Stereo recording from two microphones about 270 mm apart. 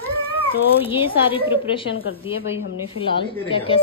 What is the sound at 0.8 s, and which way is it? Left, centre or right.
Speech, centre.